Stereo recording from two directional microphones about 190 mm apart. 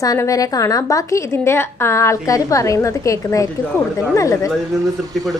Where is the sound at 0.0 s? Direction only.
20° left (ahead or behind).